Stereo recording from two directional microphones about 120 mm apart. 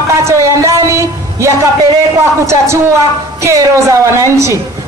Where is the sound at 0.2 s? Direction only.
25° right (ahead or behind).